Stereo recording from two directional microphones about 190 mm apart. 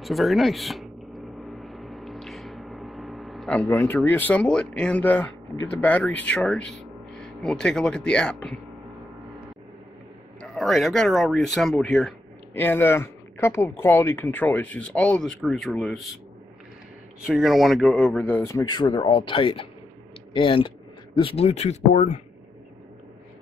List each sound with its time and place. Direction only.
0.0 s gong: centre (ahead or behind)
3.6 s speech: 10° left (ahead or behind)
10.4 s speech: centre (ahead or behind)
17.3 s speech: centre (ahead or behind); by 22.2 s 35° left (ahead or behind)